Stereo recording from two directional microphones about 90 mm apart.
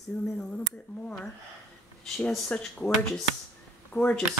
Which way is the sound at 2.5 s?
10° left (ahead or behind).